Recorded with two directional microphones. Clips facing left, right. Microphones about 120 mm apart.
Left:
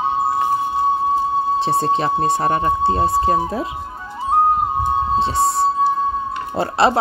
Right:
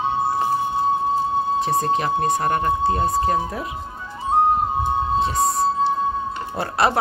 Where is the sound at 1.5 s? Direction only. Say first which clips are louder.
Left 2 dB; 30° left (ahead or behind).